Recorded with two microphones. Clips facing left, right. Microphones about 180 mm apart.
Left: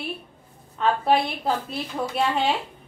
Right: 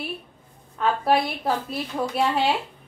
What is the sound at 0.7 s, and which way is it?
A woman's voice, 5° right (ahead or behind).